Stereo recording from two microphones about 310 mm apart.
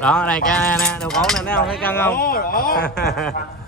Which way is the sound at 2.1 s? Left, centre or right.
Left.